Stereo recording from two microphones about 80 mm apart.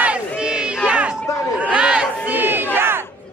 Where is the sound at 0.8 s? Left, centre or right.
Centre.